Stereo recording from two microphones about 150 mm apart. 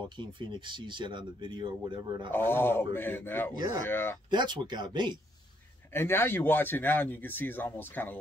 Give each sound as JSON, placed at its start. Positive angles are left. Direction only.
{"t": 0.2, "sound": "speech", "side_deg": -30}
{"t": 2.3, "sound": "speech", "side_deg": 15}
{"t": 3.5, "sound": "speech", "side_deg": -25}
{"t": 3.8, "sound": "speech", "side_deg": 15}
{"t": 4.3, "sound": "speech", "side_deg": -30}
{"t": 5.9, "sound": "speech", "side_deg": 15}